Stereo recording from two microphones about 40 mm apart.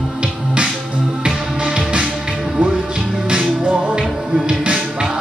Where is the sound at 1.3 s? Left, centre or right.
Right.